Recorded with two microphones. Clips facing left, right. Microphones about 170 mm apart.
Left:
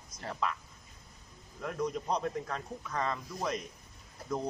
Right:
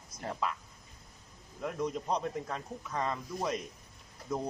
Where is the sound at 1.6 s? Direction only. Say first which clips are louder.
Even; 5° right (ahead or behind).